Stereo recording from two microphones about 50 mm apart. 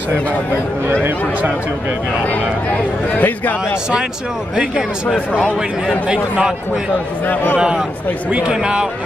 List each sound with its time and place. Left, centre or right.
2.7 s a man's voice: left
5.6 s speech: centre
7.5 s speech: centre